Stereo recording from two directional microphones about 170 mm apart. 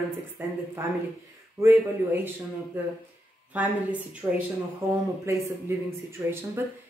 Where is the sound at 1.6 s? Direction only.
15° right (ahead or behind).